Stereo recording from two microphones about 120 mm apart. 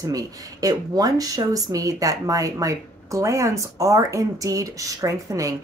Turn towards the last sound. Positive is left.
turn(degrees=-25)  # may be behind; listen again after turning